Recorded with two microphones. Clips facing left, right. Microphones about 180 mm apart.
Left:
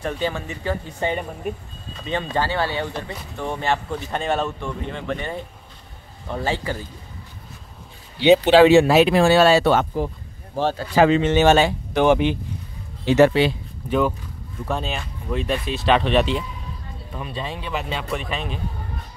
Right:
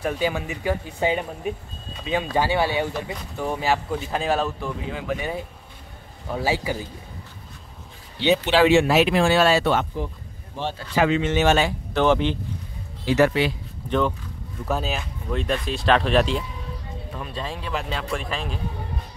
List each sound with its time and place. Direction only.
0.0 s speech: 10° right (ahead or behind)
8.5 s speech: 35° left (ahead or behind)
11.9 s speech: 15° left (ahead or behind)
13.0 s speech: 25° left (ahead or behind)
13.8 s speech: 5° left (ahead or behind)
14.7 s speech: 5° right (ahead or behind)